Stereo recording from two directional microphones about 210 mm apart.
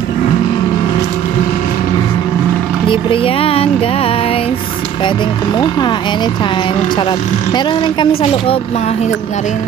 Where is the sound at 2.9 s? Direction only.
25° left (ahead or behind).